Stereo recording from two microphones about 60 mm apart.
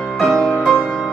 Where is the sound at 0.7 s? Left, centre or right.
Left.